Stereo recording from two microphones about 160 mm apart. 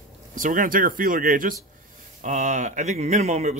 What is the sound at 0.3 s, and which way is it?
Speech, 60° right (ahead or behind).